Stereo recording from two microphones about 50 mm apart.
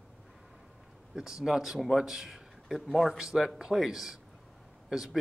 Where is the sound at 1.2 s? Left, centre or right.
Centre.